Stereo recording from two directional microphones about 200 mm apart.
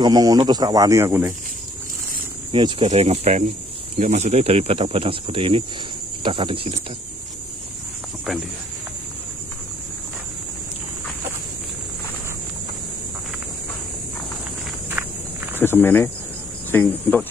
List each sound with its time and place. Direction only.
0.0 s speech: 20° right (ahead or behind)
2.5 s speech: 30° right (ahead or behind)
8.3 s speech: centre (ahead or behind)
14.9 s walk: 10° right (ahead or behind)
15.6 s speech: 10° left (ahead or behind)